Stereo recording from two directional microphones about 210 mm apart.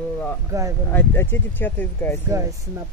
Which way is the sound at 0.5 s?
15° right (ahead or behind).